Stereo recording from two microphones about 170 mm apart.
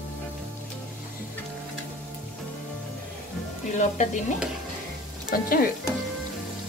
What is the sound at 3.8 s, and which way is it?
Speech, 45° left (ahead or behind).